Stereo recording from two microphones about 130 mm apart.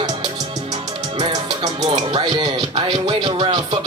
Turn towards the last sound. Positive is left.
turn(degrees=-35)  # may be behind; listen again after turning